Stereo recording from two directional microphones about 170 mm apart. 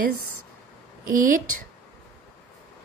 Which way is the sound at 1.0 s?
55° right (ahead or behind).